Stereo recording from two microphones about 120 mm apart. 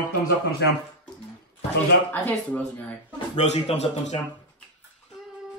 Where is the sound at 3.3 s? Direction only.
65° left (ahead or behind).